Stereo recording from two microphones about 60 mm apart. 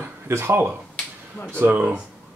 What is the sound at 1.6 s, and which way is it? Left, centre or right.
Speech, right.